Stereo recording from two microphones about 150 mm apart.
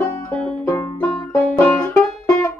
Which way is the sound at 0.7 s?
15° left (ahead or behind).